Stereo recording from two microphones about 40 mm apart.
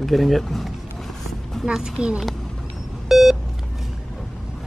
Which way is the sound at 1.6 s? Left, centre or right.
Centre.